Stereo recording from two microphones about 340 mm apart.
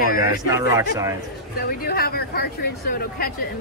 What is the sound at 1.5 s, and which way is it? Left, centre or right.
Speech, left.